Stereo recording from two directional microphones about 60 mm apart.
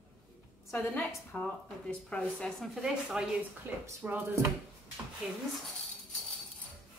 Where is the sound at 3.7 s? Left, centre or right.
Right.